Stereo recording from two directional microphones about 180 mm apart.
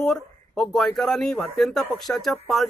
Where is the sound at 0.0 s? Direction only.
Centre (ahead or behind).